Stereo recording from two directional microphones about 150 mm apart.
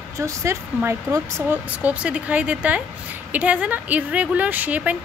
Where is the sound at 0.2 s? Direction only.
20° right (ahead or behind).